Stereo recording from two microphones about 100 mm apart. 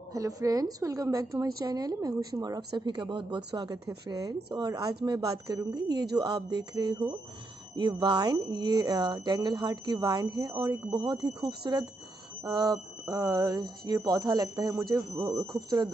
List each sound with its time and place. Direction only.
0.1 s a woman's voice: 35° right (ahead or behind)